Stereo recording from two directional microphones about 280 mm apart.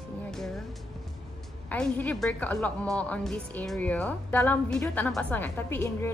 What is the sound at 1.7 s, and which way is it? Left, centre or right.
A woman's voice, centre.